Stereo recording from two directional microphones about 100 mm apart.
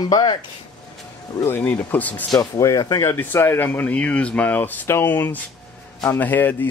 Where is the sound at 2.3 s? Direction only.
35° left (ahead or behind).